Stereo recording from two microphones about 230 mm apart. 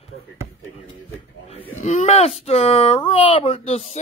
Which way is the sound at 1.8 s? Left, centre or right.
Left.